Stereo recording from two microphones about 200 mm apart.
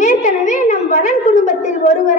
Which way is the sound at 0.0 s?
40° left (ahead or behind).